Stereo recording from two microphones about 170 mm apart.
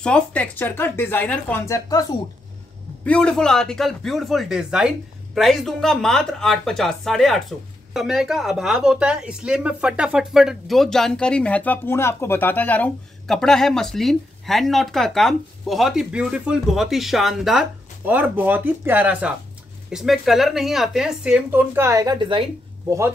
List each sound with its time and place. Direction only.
0.0 s speech: 5° left (ahead or behind)
3.0 s speech: 5° left (ahead or behind); by 23.1 s 15° right (ahead or behind)